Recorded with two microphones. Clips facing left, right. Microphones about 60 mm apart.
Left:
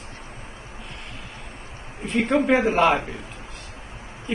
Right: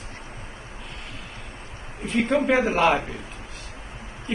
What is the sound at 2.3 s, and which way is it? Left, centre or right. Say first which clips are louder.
Speech: left 2 dB; centre.